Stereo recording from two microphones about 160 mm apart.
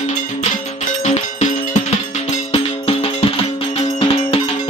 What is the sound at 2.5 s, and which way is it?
Music, 40° left (ahead or behind).